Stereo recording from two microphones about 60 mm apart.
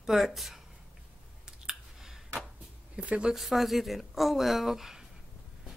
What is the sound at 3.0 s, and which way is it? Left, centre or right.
Speech, centre.